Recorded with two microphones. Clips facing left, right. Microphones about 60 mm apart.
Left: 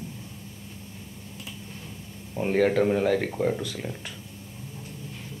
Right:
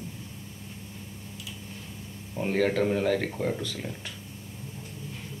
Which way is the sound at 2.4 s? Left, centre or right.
Centre.